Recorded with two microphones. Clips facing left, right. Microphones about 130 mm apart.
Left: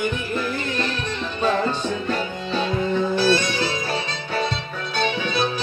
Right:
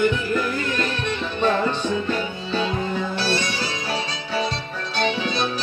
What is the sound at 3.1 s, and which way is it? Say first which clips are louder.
Music: left 5 dB; 50° left (ahead or behind).